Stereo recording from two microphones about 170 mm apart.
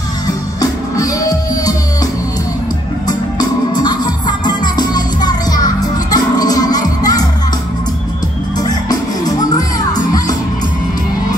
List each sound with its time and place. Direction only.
0.6 s music: 20° left (ahead or behind)
3.1 s music: 25° left (ahead or behind)
8.5 s music: 25° left (ahead or behind)